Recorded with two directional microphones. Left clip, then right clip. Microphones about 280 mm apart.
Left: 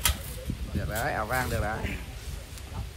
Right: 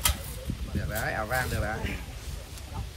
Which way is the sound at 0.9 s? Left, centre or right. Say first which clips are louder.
Left 1 dB; centre.